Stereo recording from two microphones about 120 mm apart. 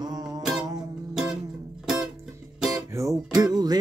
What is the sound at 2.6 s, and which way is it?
Music, 30° right (ahead or behind).